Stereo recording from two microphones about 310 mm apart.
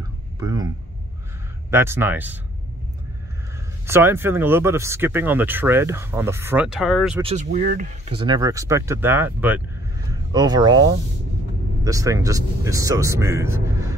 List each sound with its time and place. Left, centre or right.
0.4 s a sound: centre
1.7 s speech: centre
3.8 s speech: centre
7.2 s speech: centre